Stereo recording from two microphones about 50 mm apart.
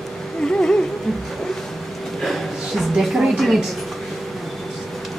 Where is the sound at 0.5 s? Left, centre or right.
Centre.